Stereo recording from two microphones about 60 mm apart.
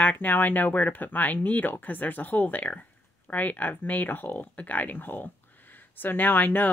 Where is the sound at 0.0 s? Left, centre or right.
Left.